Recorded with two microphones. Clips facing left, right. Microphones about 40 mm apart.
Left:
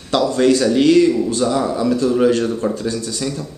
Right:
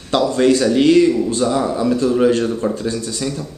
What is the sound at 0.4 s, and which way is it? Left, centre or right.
A man's voice, centre.